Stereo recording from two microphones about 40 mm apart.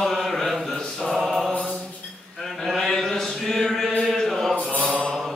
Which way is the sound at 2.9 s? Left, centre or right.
Centre.